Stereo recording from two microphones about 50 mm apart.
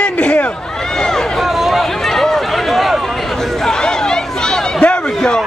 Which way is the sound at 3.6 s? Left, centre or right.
Centre.